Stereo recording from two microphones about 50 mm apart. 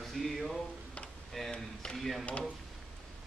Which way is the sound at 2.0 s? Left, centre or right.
Centre.